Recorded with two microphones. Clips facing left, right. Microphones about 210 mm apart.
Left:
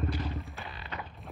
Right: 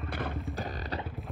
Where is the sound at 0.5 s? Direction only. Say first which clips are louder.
Right 6 dB; 40° right (ahead or behind).